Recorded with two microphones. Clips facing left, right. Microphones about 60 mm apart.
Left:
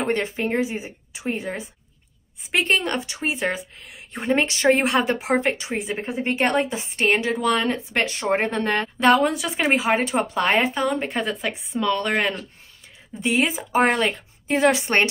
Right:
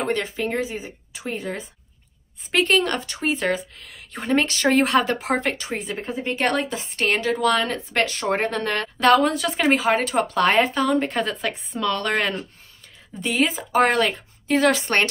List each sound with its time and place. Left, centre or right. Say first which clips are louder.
0.0 s speech: left 1 dB; left